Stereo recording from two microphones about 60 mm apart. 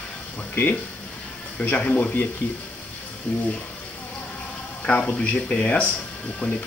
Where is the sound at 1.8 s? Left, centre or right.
Left.